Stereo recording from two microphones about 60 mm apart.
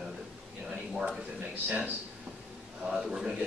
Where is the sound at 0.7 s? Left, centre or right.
Centre.